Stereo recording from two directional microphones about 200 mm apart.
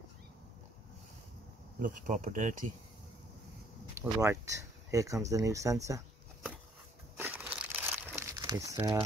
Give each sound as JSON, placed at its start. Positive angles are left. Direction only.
{"t": 1.8, "sound": "speech", "side_deg": -40}
{"t": 4.1, "sound": "speech", "side_deg": -15}
{"t": 5.9, "sound": "a sound", "side_deg": -15}
{"t": 7.2, "sound": "crumpling", "side_deg": -10}